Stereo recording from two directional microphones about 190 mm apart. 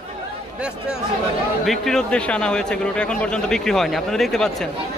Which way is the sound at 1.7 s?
5° left (ahead or behind).